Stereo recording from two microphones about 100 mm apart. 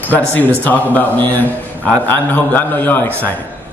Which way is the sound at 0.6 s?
15° left (ahead or behind).